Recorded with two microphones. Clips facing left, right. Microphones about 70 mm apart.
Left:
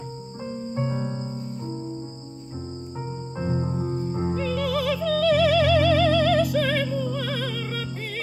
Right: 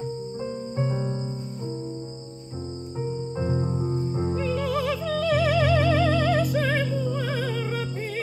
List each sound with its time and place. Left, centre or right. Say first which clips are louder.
0.7 s music: even; centre
3.3 s music: left 2 dB; centre
4.5 s music: left 2 dB; centre